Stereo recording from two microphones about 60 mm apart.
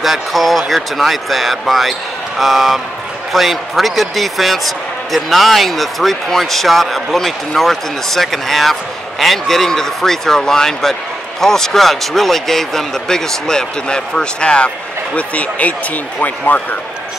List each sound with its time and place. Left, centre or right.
0.0 s speech: centre; by 16.6 s left